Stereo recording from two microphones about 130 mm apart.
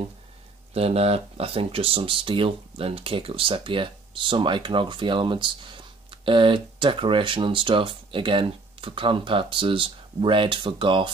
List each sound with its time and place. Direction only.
0.7 s speech: 50° right (ahead or behind)